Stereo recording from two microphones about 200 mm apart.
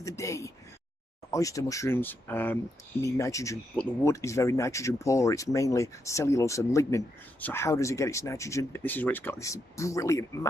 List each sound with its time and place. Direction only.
0.0 s speech: 15° left (ahead or behind)